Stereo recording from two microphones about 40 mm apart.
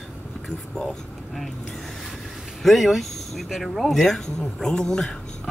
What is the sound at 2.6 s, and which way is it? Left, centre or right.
Speech, centre.